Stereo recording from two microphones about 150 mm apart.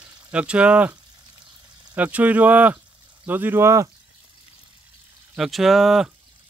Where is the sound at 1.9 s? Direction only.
10° right (ahead or behind).